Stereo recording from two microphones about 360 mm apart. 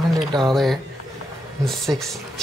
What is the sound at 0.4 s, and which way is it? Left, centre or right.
Speech, centre.